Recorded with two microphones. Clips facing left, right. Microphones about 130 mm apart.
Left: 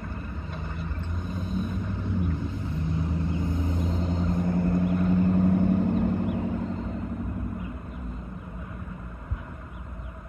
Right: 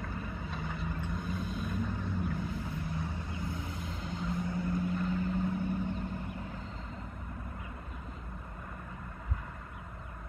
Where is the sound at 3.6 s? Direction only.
40° left (ahead or behind); by 6.4 s 80° left.